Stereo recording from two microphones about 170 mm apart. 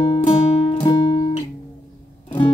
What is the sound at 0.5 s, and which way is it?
Music, 30° left (ahead or behind).